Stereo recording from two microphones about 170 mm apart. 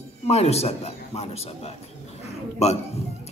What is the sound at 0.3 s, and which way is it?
A man's voice, 40° left (ahead or behind).